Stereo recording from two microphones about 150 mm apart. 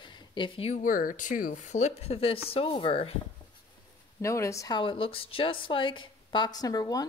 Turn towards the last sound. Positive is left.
turn(degrees=25)  # may be behind; listen again after turning